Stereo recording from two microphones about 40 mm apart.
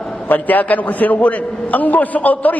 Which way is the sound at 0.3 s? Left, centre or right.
Left.